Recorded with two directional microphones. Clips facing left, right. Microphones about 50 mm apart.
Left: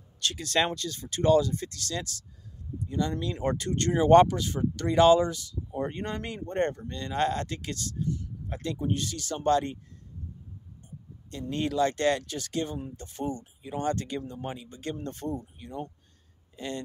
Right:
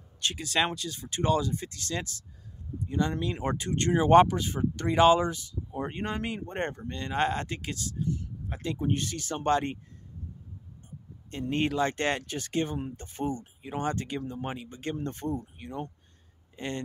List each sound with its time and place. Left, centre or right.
0.2 s speech: centre
8.8 s speech: right
11.5 s speech: right
13.8 s speech: right